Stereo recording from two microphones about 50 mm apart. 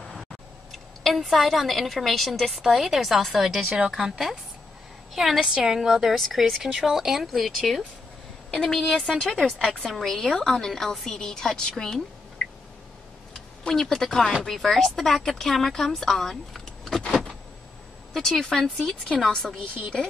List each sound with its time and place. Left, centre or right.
0.7 s a woman's voice: centre
3.7 s a woman's voice: centre
5.4 s a woman's voice: centre
6.1 s a woman's voice: centre
13.3 s a sound: centre
14.4 s a woman's voice: centre
18.4 s a woman's voice: centre